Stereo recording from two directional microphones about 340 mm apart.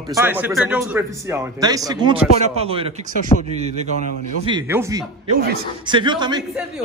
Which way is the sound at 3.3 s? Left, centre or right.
Centre.